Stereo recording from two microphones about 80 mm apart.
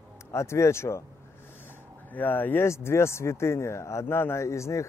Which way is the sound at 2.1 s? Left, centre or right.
Left.